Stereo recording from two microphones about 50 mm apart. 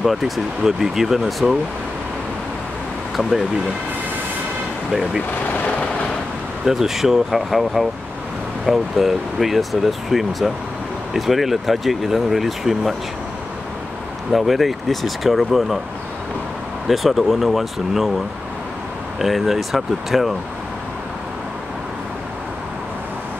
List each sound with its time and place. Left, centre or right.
0.0 s speech: centre
3.2 s speech: centre
5.5 s vehicle: left
6.6 s speech: centre
14.3 s speech: centre
16.8 s speech: centre
19.1 s speech: centre